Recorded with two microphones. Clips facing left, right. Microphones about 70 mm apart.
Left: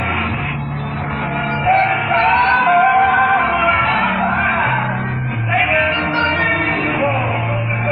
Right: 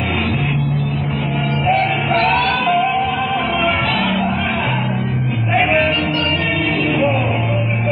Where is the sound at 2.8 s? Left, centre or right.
Left.